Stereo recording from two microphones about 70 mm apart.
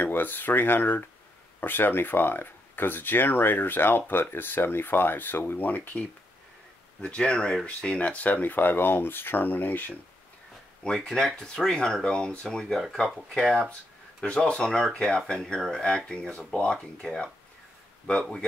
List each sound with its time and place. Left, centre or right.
0.0 s speech: left
11.1 s speech: centre